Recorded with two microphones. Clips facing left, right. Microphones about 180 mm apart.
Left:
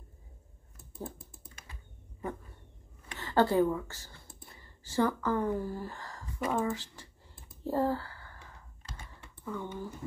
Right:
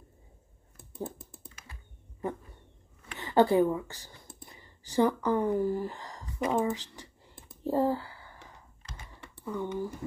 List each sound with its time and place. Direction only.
3.2 s speech: 15° right (ahead or behind)
7.6 s typing: 15° right (ahead or behind)
9.4 s speech: 15° right (ahead or behind)